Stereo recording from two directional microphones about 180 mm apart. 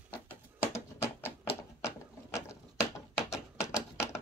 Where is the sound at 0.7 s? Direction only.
15° left (ahead or behind).